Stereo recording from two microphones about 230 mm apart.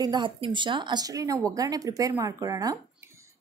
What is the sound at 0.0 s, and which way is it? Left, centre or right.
A woman's voice, centre.